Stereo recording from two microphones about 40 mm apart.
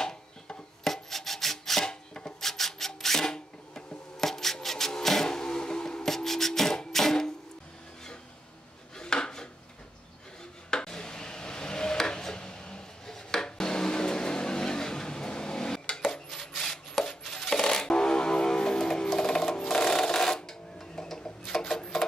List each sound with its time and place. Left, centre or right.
0.0 s rub: centre
4.2 s vehicle: centre
8.9 s dishes: centre
10.7 s a sound: centre
16.3 s coin: centre
19.1 s music: centre
21.2 s a sound: centre